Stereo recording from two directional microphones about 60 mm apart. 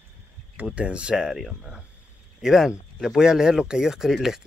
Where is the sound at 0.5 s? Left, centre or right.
Right.